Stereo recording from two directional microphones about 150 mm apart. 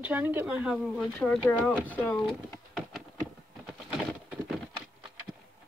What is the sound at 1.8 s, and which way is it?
Speech, 10° left (ahead or behind).